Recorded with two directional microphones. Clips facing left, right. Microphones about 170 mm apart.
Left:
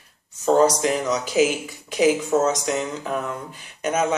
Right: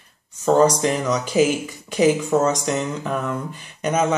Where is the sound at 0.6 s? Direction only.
5° left (ahead or behind).